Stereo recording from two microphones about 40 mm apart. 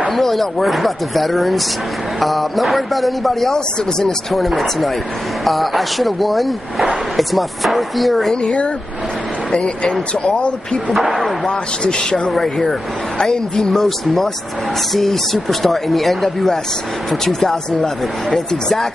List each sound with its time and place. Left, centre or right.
0.1 s speech: centre
8.4 s speech: left
11.4 s speech: centre